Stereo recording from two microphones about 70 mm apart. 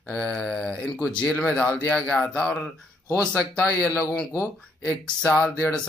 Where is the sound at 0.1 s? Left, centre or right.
Centre.